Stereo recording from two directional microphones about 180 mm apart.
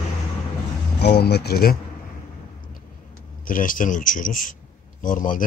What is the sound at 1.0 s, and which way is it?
Speech, 65° left (ahead or behind).